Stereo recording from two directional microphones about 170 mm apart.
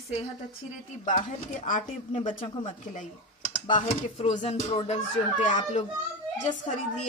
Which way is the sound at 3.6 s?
35° left (ahead or behind).